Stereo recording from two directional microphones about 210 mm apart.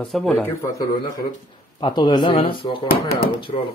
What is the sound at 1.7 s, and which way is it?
Speech, 20° left (ahead or behind).